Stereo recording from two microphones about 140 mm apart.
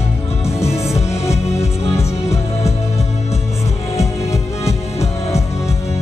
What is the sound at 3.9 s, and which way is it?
Music, 20° left (ahead or behind).